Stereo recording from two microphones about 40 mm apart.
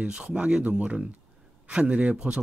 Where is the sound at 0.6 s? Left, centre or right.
Right.